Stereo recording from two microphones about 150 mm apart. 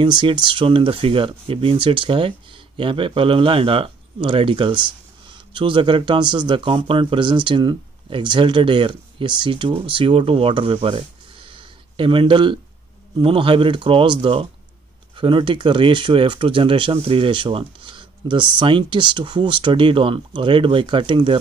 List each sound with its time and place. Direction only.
0.0 s speech: 30° right (ahead or behind)